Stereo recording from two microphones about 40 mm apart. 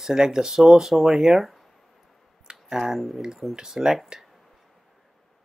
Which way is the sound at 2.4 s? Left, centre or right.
Centre.